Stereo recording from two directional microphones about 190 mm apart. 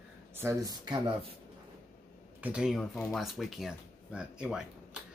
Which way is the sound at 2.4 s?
5° right (ahead or behind).